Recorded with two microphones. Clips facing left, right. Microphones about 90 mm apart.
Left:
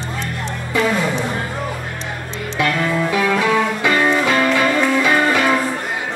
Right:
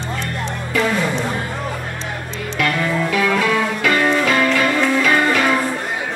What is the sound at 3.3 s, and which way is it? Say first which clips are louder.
Music: left 1 dB; 15° left (ahead or behind).